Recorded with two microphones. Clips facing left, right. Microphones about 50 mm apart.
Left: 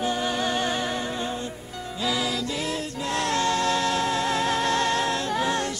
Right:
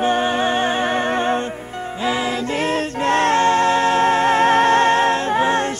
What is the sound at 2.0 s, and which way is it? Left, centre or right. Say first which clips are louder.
Music: right 6 dB; right.